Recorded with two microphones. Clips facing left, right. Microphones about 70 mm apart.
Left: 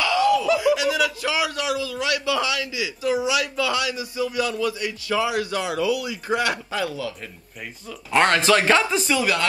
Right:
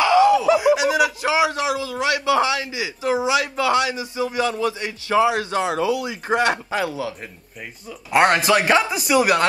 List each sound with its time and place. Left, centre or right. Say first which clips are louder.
0.0 s speech: right 5 dB; right
8.1 s speech: right 2 dB; centre